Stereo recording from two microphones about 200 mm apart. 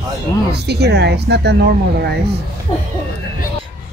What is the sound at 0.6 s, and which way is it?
Speech, 55° right (ahead or behind).